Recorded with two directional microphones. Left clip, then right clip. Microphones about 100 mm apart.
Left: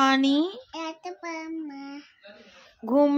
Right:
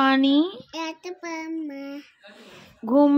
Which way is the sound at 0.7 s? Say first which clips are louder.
Right 3 dB; 25° left (ahead or behind).